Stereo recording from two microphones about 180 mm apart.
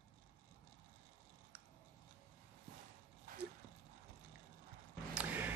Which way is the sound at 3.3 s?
50° right (ahead or behind).